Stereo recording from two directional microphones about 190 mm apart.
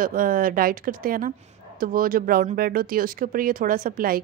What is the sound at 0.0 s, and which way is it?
Speech, 50° right (ahead or behind).